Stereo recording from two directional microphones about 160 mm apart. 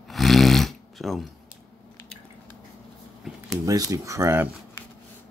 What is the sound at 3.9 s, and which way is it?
Speech, 20° right (ahead or behind).